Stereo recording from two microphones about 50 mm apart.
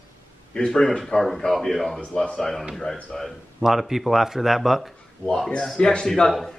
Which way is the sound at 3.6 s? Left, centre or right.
Centre.